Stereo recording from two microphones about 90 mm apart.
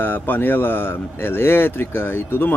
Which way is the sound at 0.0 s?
20° left (ahead or behind).